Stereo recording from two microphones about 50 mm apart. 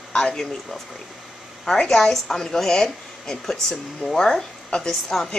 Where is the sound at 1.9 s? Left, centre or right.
Centre.